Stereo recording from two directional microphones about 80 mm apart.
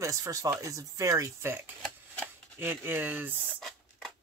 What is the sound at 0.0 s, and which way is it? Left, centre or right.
Speech, right.